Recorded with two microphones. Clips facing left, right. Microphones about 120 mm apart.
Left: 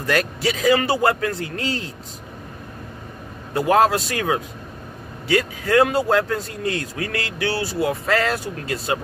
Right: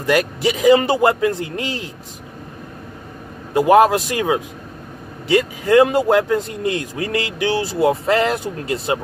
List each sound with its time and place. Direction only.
0.0 s a man's voice: 15° right (ahead or behind)
3.5 s a man's voice: 15° right (ahead or behind)